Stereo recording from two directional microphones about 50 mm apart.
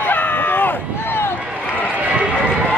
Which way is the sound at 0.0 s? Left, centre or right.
Left.